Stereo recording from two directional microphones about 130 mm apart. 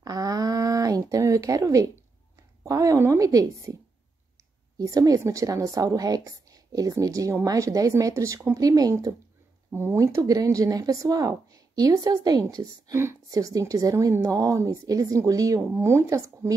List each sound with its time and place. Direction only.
0.0 s a sound: 30° right (ahead or behind)
2.6 s speech: 25° right (ahead or behind)
4.7 s speech: 25° right (ahead or behind)